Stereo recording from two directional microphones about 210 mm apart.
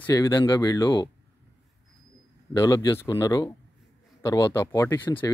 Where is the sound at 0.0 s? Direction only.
15° left (ahead or behind).